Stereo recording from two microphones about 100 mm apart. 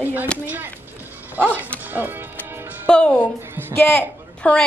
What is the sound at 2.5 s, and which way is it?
Music, 20° right (ahead or behind).